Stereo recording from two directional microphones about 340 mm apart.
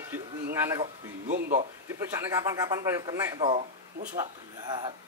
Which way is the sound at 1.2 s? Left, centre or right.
Right.